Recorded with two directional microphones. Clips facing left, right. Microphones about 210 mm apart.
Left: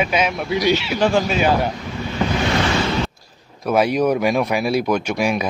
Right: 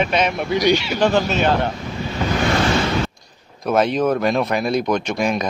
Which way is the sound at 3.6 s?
10° left (ahead or behind).